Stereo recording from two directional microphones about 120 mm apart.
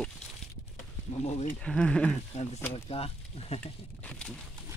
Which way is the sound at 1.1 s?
65° left (ahead or behind).